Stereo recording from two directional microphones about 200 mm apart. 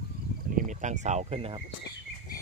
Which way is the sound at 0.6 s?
40° right (ahead or behind).